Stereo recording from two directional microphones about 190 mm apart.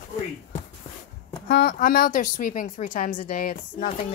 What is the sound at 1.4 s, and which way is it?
A woman's voice, 55° left (ahead or behind).